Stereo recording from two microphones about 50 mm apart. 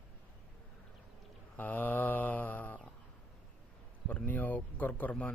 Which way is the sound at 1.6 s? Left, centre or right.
Left.